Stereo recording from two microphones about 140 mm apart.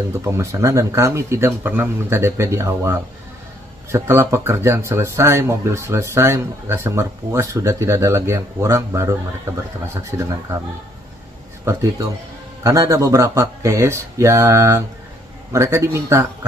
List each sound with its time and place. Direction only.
0.2 s speech: 20° right (ahead or behind)
11.6 s speech: 20° right (ahead or behind)